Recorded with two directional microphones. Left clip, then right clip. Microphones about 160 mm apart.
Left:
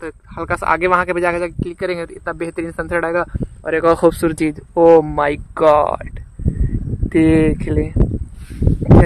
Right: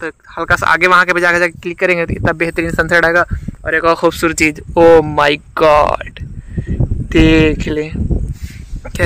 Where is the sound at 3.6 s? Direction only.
25° left (ahead or behind); by 8.0 s 10° left (ahead or behind).